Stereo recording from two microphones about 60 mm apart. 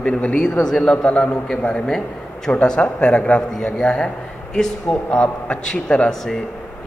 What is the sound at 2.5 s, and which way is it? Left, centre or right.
Speech, centre.